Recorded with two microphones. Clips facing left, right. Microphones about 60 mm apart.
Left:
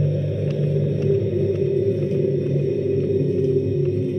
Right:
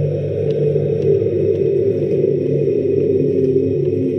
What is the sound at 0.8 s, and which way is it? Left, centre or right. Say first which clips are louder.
Music: right 6 dB; right.